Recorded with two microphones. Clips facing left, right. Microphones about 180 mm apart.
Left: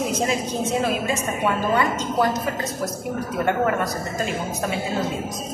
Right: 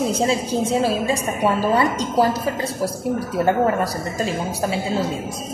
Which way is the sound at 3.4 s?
30° right (ahead or behind).